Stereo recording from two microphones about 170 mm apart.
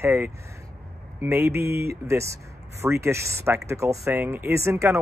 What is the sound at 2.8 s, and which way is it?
Speech, 15° right (ahead or behind).